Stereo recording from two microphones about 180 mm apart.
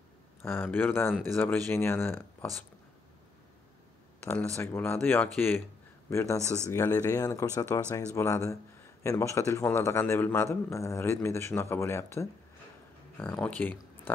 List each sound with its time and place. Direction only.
0.4 s a man's voice: 10° left (ahead or behind)
4.2 s a man's voice: 10° left (ahead or behind)